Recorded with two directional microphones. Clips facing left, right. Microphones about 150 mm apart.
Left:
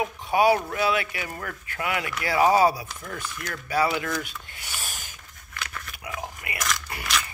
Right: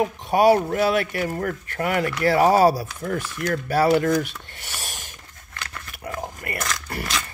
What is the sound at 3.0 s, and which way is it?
Speech, 45° right (ahead or behind).